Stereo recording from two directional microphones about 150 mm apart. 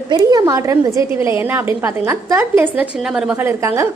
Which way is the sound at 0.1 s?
25° right (ahead or behind).